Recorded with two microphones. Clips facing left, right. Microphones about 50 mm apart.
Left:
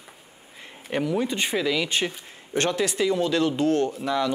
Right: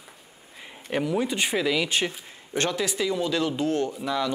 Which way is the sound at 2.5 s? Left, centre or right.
Left.